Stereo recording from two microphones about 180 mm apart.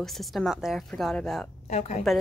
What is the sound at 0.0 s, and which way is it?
Speech, centre (ahead or behind).